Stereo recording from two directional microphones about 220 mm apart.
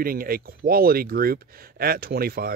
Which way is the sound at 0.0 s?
40° right (ahead or behind).